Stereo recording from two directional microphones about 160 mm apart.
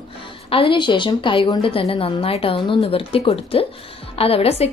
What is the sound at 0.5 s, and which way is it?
A woman's voice, 35° left (ahead or behind).